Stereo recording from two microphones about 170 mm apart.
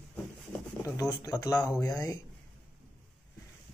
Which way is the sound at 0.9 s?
20° left (ahead or behind).